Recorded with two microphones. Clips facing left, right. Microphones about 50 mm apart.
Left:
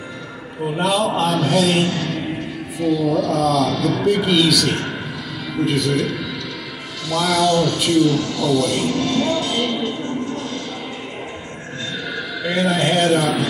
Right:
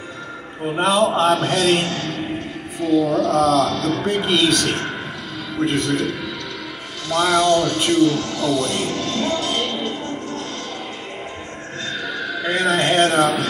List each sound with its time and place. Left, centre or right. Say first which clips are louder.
0.7 s a man's voice: right 2 dB; right
5.7 s a man's voice: left 1 dB; right
7.1 s speech: right 1 dB; right
12.4 s speech: even; right